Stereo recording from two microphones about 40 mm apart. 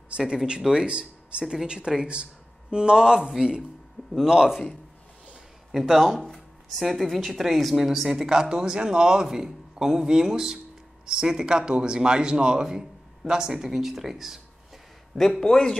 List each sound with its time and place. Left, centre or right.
0.3 s speech: right
0.8 s speech: right
5.7 s speech: centre
15.4 s a man's voice: centre